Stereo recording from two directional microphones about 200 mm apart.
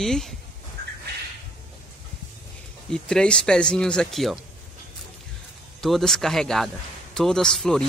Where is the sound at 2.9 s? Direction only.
5° left (ahead or behind).